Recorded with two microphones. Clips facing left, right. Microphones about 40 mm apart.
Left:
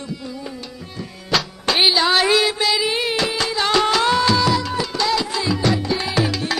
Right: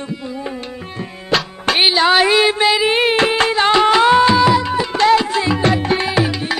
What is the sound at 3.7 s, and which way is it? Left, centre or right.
Music, right.